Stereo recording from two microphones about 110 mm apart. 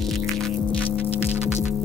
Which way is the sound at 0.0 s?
Centre (ahead or behind).